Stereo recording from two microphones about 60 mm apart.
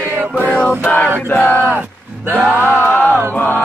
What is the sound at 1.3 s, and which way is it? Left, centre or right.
Speech, left.